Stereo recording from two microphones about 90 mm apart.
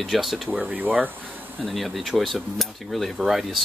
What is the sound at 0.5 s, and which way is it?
Speech, 15° right (ahead or behind).